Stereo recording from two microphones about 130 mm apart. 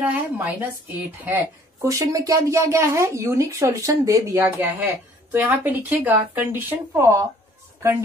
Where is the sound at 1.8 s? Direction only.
25° right (ahead or behind).